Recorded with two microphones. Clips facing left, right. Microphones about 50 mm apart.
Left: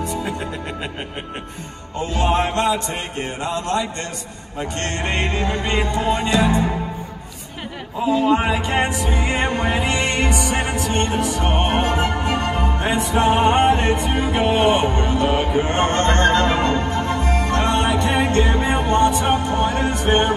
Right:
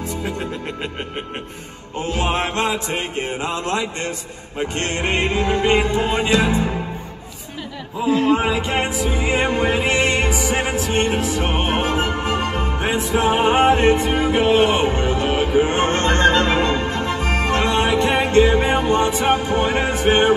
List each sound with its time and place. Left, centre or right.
2.1 s music: right
3.4 s music: right
8.1 s a sound: right
8.5 s music: centre
11.9 s music: centre; by 20.3 s right